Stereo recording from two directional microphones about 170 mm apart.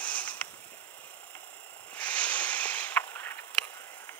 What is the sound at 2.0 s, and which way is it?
Snort, 10° left (ahead or behind).